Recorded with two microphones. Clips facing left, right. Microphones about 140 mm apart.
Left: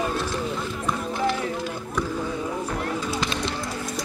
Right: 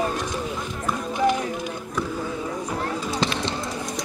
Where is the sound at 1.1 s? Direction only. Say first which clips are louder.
Right 5 dB; 15° right (ahead or behind).